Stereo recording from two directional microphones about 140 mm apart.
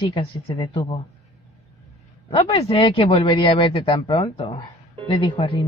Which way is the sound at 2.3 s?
40° left (ahead or behind).